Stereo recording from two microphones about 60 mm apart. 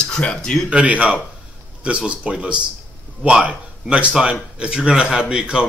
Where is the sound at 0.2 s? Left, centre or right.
Centre.